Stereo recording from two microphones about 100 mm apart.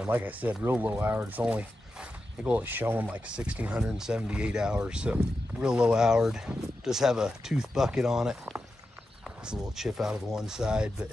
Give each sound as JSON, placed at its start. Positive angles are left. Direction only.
{"t": 0.0, "sound": "speech", "side_deg": -15}